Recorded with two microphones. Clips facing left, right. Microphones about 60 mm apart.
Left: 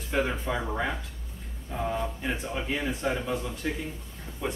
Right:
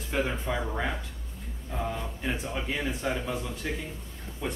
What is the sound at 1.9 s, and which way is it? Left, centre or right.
Speech, centre.